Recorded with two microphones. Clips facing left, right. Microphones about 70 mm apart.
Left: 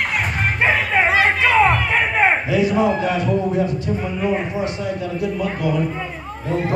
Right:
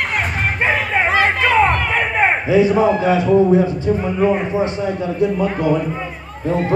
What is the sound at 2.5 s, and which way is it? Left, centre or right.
Speech, right.